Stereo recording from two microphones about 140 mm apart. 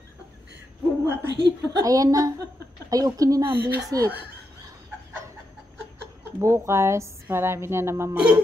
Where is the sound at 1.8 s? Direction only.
25° right (ahead or behind).